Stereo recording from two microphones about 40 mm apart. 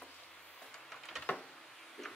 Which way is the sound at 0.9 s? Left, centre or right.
Centre.